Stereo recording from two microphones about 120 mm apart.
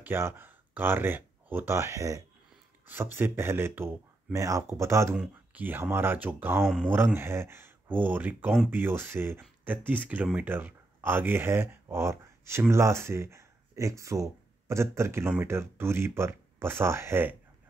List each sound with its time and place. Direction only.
0.0 s speech: 15° right (ahead or behind)
5.1 s speech: 10° right (ahead or behind)